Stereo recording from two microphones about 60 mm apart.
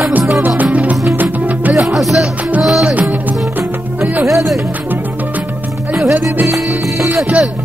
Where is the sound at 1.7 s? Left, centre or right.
Centre.